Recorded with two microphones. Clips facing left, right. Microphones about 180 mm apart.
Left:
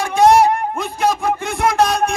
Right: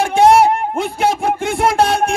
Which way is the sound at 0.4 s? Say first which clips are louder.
Right 1 dB; 65° right (ahead or behind).